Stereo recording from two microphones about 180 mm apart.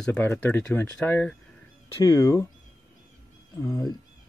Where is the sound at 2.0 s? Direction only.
20° left (ahead or behind).